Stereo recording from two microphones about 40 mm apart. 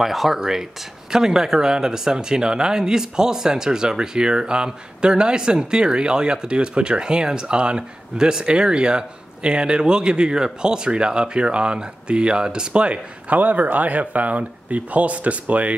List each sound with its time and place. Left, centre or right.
0.0 s speech: centre; by 15.7 s right